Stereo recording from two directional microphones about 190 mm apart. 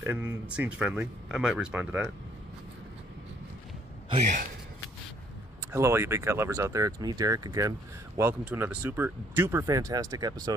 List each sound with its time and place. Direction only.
0.0 s speech: 10° right (ahead or behind)
4.1 s a man's voice: 40° right (ahead or behind)
5.7 s speech: 15° right (ahead or behind)